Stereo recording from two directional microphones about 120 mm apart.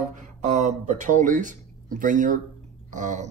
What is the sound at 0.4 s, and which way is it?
Speech, 80° right.